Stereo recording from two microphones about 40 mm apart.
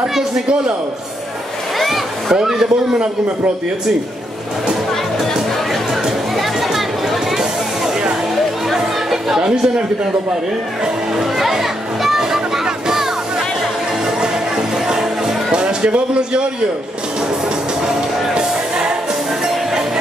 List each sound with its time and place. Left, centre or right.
1.8 s a sound: centre
2.3 s a man's voice: centre
6.3 s a sound: centre
8.6 s chatter: centre
11.1 s music: centre
12.2 s a sound: centre
14.9 s music: centre
15.5 s speech: right
18.3 s music: centre